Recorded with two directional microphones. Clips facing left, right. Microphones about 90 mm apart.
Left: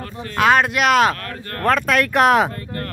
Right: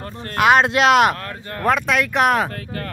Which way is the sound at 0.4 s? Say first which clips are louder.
Right 1 dB; 20° right (ahead or behind).